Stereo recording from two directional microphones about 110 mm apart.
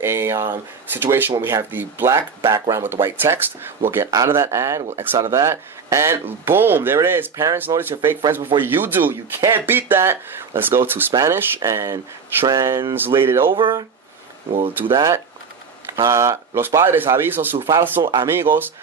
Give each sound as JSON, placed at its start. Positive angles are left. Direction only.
{"t": 0.0, "sound": "speech", "side_deg": -20}
{"t": 13.5, "sound": "speech", "side_deg": -50}
{"t": 15.0, "sound": "speech", "side_deg": -30}